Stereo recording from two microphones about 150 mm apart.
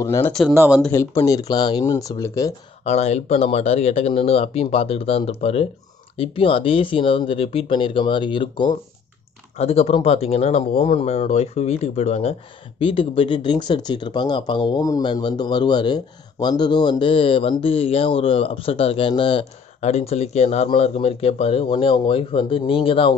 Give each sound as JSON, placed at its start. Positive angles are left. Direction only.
{"t": 0.0, "sound": "speech", "side_deg": 20}
{"t": 0.3, "sound": "speech", "side_deg": 0}
{"t": 0.9, "sound": "speech", "side_deg": 20}
{"t": 2.8, "sound": "speech", "side_deg": 45}
{"t": 9.6, "sound": "speech", "side_deg": 40}